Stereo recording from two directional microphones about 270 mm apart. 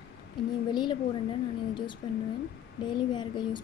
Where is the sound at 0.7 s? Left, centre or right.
Centre.